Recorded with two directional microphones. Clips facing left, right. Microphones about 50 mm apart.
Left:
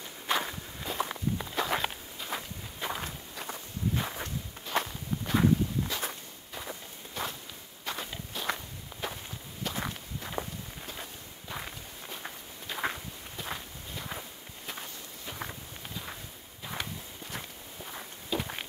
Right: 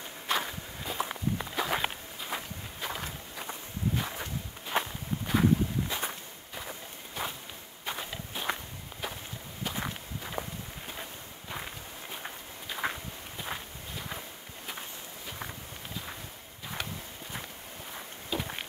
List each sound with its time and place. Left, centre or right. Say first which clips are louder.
0.3 s walk: left 1 dB; centre
2.8 s walk: left 2 dB; centre
4.6 s walk: even; centre
6.5 s walk: even; centre
9.0 s walk: left 1 dB; centre
12.6 s a sound: even; centre
13.4 s walk: even; centre
17.9 s walk: left 1 dB; centre